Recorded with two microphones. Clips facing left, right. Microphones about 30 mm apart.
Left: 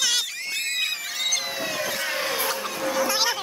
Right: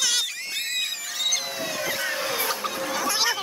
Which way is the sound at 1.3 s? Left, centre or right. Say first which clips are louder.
Left 1 dB; centre.